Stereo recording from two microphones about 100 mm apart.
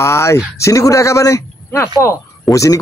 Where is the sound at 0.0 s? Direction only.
30° left (ahead or behind).